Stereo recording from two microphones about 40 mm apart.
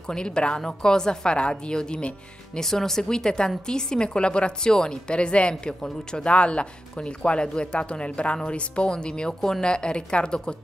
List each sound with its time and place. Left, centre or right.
0.1 s a woman's voice: left
2.6 s a woman's voice: centre